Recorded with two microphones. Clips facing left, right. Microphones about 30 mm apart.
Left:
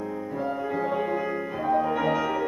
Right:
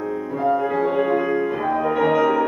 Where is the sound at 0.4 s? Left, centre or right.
Right.